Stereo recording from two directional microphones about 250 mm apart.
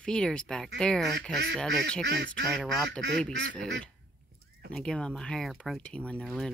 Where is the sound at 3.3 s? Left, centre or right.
Right.